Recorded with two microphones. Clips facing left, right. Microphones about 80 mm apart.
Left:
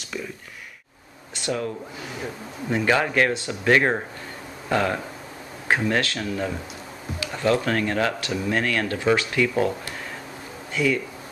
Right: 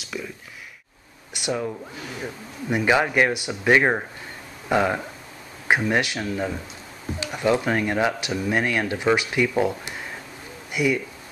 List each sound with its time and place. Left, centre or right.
0.0 s a sound: centre
1.3 s speech: centre
2.7 s speech: centre